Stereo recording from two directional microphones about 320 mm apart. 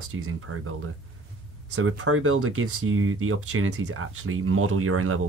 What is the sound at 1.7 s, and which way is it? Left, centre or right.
Speech, right.